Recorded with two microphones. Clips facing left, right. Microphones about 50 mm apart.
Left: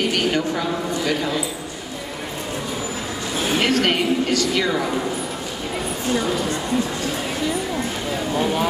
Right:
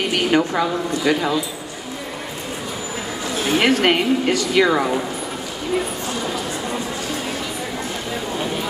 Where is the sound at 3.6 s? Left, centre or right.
Centre.